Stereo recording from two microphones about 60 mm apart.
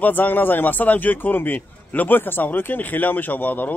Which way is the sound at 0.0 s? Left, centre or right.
Left.